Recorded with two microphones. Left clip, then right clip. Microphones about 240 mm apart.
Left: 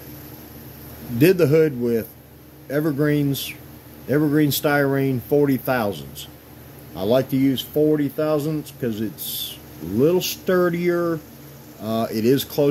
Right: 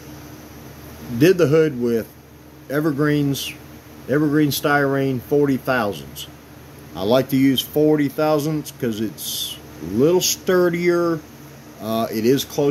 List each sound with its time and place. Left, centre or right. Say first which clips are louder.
1.2 s speech: right 1 dB; centre